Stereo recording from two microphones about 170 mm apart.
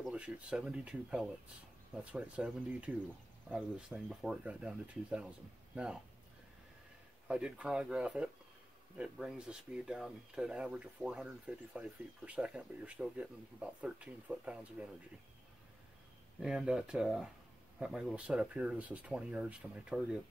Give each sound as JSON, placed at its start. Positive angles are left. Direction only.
{"t": 0.0, "sound": "speech", "side_deg": -5}
{"t": 7.2, "sound": "speech", "side_deg": -5}
{"t": 16.3, "sound": "speech", "side_deg": -5}